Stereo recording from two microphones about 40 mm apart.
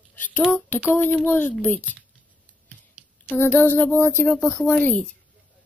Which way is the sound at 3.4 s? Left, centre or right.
Left.